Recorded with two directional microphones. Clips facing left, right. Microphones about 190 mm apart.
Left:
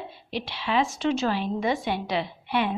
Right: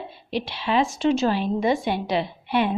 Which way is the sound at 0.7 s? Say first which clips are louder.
Right 4 dB; 30° right (ahead or behind).